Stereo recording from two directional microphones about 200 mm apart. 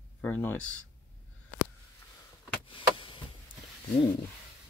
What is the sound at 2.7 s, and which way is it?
Chop, 25° left (ahead or behind).